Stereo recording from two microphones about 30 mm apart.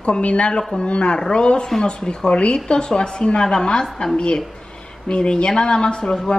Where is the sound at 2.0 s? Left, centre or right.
Left.